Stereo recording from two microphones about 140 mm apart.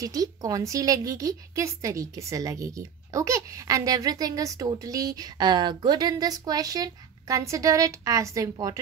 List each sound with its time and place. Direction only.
0.0 s a woman's voice: 25° right (ahead or behind)